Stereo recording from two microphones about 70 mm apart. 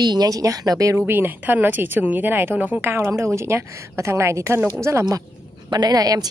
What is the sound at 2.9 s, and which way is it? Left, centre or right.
Speech, right.